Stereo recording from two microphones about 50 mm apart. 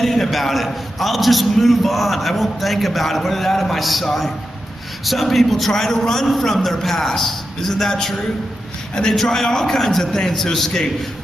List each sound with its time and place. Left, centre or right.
0.0 s a man's voice: centre